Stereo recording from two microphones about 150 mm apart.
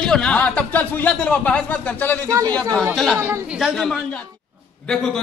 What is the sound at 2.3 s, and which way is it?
Speech, 25° right (ahead or behind).